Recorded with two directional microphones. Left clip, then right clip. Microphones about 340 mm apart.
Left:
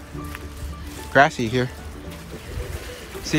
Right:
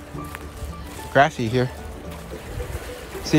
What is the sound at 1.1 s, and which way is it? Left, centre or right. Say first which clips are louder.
Speech: left 1 dB; centre.